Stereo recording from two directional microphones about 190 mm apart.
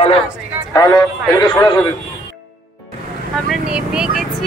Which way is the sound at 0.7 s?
20° left (ahead or behind).